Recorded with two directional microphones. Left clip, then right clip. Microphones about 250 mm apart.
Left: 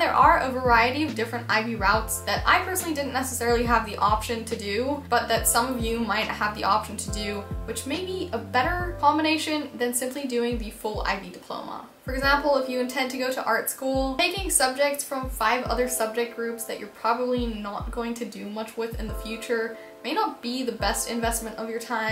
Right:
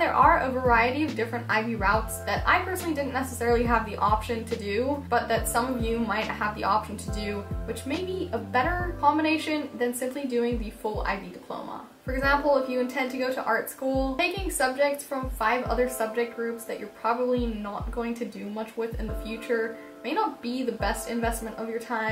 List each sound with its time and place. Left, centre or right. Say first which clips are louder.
0.0 s a woman's voice: left 2 dB; centre
12.1 s a woman's voice: left 1 dB; centre
13.5 s speech: left 2 dB; centre
14.1 s a woman's voice: left 2 dB; centre